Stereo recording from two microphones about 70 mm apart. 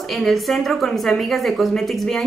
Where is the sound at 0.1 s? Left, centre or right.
Centre.